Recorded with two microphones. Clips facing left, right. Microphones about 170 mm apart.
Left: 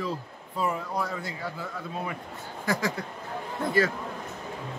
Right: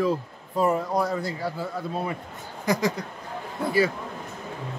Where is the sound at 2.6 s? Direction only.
20° right (ahead or behind).